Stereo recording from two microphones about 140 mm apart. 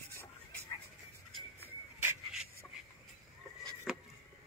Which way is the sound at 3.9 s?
Centre (ahead or behind).